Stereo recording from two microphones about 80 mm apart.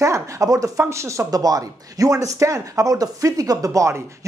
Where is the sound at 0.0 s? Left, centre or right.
Right.